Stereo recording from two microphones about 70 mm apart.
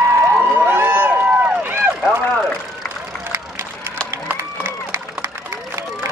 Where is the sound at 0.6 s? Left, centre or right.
Right.